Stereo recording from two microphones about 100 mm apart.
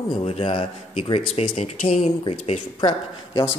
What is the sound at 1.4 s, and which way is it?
Speech, 90° left.